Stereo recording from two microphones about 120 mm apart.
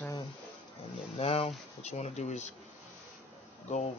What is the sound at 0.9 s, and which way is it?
Speech, 55° left (ahead or behind).